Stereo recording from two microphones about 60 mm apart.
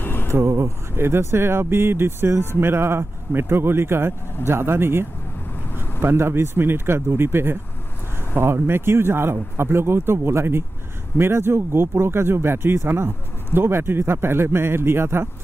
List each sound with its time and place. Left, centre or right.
0.0 s vehicle: left
0.3 s speech: right